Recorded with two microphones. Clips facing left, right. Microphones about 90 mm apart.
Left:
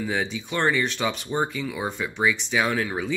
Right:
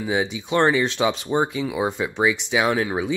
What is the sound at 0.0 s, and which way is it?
Speech, 20° right (ahead or behind).